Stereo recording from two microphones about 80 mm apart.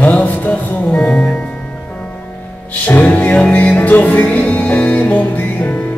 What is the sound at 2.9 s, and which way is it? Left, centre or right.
Music, centre.